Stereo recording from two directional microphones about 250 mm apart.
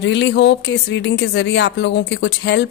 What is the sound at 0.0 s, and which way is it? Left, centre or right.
Speech, left.